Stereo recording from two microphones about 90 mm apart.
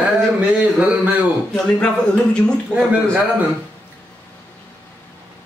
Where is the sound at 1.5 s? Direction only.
10° left (ahead or behind).